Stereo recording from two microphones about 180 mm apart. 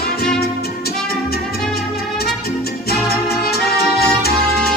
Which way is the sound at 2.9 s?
60° left (ahead or behind).